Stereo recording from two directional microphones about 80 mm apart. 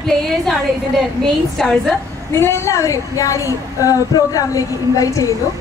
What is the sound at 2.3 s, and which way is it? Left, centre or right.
A woman's voice, left.